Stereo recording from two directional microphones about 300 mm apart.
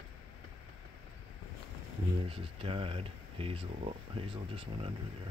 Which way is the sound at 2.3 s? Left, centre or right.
Centre.